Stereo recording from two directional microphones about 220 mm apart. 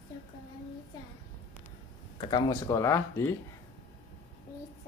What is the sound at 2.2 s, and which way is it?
Speech, 15° left (ahead or behind).